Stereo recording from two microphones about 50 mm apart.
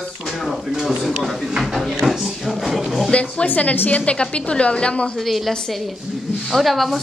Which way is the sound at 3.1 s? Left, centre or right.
Left.